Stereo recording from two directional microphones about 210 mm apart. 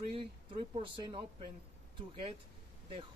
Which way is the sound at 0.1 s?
25° right (ahead or behind).